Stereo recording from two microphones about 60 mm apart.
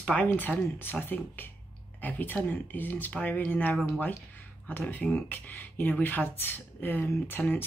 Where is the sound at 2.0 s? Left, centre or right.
Left.